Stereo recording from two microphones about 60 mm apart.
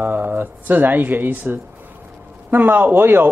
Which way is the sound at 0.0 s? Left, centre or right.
Right.